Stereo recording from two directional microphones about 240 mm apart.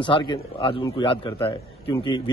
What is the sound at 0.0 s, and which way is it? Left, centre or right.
A man's voice, centre.